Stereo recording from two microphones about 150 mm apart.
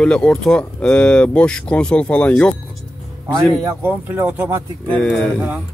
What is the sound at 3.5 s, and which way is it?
Speech, 20° right (ahead or behind).